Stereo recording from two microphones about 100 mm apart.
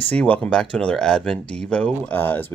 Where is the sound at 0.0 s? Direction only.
15° left (ahead or behind).